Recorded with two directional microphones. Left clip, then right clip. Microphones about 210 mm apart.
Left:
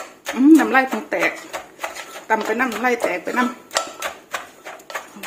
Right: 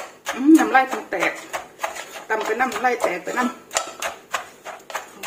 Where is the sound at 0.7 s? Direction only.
40° left (ahead or behind).